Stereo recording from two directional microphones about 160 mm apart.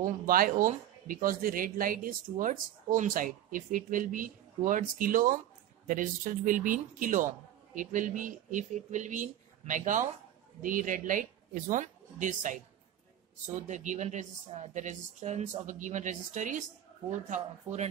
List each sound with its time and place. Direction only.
0.0 s speech: 60° right (ahead or behind)
13.7 s speech: 50° right (ahead or behind)